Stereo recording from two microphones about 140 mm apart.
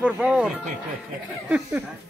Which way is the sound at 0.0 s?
5° right (ahead or behind).